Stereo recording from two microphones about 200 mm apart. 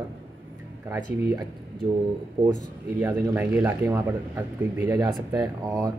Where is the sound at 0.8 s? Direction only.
15° right (ahead or behind).